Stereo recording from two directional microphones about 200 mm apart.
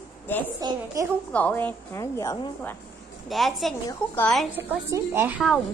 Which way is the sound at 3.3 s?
Centre (ahead or behind).